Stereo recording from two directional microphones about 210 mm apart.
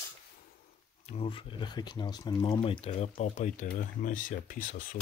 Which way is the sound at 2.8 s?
30° left (ahead or behind).